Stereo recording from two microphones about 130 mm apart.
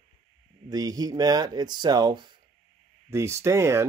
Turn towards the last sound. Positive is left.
turn(degrees=-20)  # may be behind; listen again after turning